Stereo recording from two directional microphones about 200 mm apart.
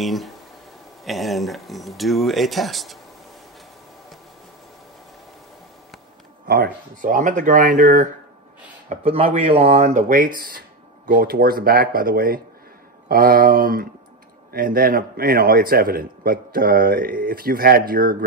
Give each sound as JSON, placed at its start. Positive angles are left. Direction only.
{"t": 0.0, "sound": "speech", "side_deg": 0}
{"t": 6.4, "sound": "speech", "side_deg": -50}
{"t": 8.8, "sound": "a man's voice", "side_deg": -30}